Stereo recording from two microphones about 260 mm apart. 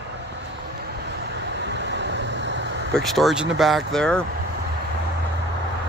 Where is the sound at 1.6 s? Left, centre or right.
Right.